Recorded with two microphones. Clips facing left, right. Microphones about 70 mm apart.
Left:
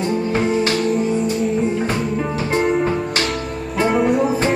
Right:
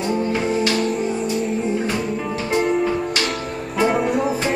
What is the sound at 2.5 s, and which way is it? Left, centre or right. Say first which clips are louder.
Music: left 1 dB; left.